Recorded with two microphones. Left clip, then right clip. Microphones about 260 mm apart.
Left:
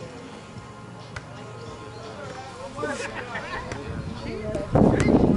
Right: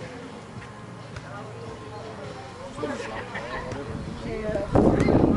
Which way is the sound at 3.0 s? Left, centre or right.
Centre.